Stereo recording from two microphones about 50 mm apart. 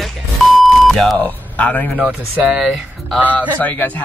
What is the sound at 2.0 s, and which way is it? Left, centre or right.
Speech, right.